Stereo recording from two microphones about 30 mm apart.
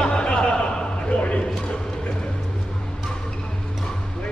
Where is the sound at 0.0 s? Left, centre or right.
Left.